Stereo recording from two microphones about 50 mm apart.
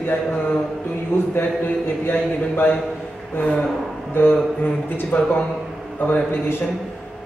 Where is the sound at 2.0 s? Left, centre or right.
Left.